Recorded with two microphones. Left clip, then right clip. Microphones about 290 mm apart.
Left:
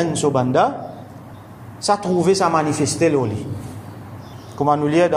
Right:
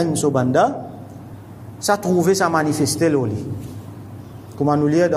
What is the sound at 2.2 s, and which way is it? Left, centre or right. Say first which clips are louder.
Mantra: left 3 dB; centre.